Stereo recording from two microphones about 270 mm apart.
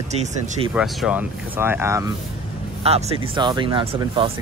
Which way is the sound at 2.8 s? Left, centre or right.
Right.